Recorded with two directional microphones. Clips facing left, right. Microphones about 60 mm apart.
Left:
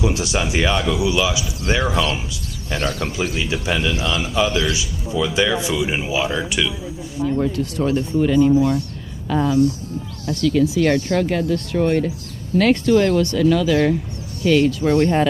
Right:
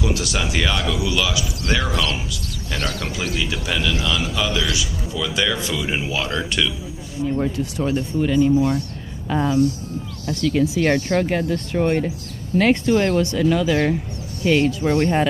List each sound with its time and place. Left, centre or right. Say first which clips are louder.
0.0 s a man's voice: left 2 dB; left
7.3 s speech: left 2 dB; centre
9.3 s speech: left 2 dB; centre